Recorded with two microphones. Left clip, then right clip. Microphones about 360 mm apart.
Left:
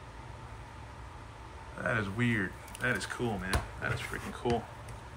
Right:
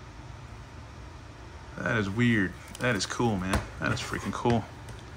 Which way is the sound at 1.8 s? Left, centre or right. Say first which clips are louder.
Right 4 dB; centre.